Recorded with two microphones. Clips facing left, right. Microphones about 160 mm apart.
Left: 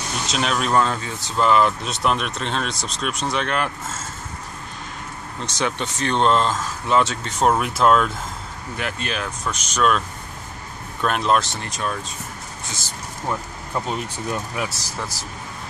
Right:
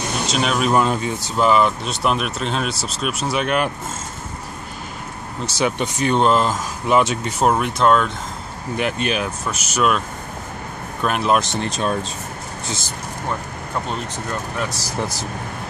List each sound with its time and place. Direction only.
0.3 s speech: 5° right (ahead or behind)
1.4 s speech: centre (ahead or behind)
5.4 s speech: 10° right (ahead or behind)
8.7 s speech: 20° right (ahead or behind)
9.4 s speech: 5° right (ahead or behind)
11.4 s speech: 25° right (ahead or behind)
14.9 s speech: 20° right (ahead or behind)